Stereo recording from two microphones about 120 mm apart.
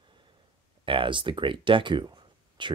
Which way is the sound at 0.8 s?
45° right (ahead or behind).